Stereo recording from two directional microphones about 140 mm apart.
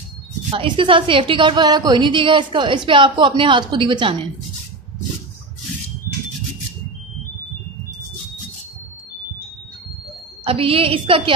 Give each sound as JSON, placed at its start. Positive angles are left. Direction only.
{"t": 0.5, "sound": "a woman's voice", "side_deg": -40}
{"t": 10.4, "sound": "a woman's voice", "side_deg": -40}